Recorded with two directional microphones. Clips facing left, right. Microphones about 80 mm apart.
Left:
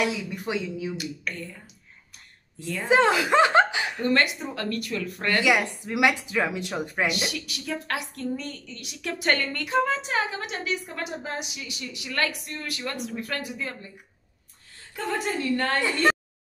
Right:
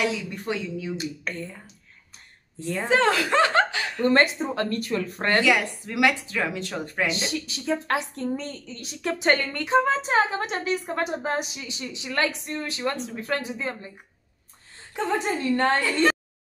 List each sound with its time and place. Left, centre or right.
0.3 s speech: centre
0.9 s a woman's voice: right
2.6 s a woman's voice: right
2.9 s speech: centre
4.1 s a woman's voice: right
5.4 s speech: centre
7.2 s a woman's voice: right
15.0 s a woman's voice: right
15.8 s speech: left